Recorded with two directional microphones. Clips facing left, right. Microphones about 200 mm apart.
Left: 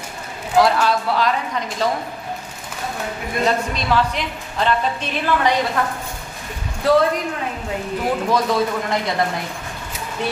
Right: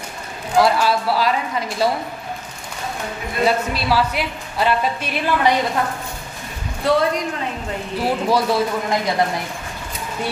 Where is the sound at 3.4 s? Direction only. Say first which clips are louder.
Right 2 dB; 10° right (ahead or behind).